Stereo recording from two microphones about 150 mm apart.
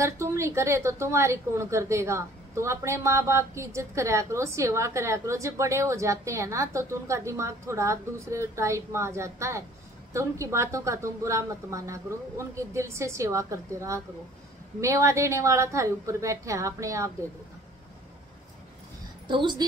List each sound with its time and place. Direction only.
0.0 s a woman's voice: 20° right (ahead or behind)
19.2 s speech: 30° right (ahead or behind)